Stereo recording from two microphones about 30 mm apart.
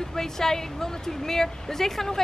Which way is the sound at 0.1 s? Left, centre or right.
Centre.